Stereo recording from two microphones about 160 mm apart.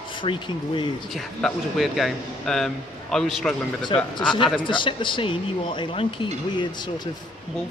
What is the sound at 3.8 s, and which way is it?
A man's voice, 30° left (ahead or behind).